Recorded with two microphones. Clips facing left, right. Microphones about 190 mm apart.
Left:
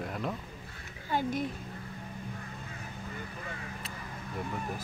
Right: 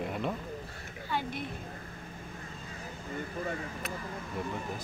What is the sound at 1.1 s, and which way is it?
Speech, 45° left (ahead or behind).